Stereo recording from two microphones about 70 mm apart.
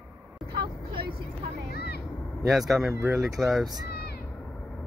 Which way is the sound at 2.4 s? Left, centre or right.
Centre.